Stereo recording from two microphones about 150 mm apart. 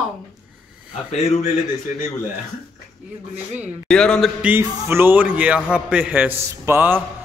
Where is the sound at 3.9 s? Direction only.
5° left (ahead or behind).